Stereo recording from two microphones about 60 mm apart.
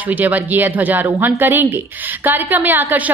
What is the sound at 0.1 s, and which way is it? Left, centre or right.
A woman's voice, right.